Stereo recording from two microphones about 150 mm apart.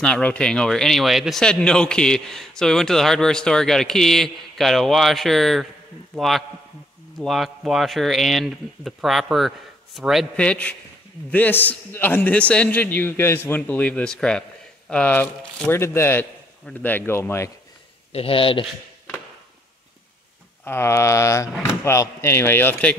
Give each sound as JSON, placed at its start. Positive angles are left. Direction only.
{"t": 0.0, "sound": "a man's voice", "side_deg": 5}
{"t": 18.1, "sound": "speech", "side_deg": 40}
{"t": 20.6, "sound": "a man's voice", "side_deg": 15}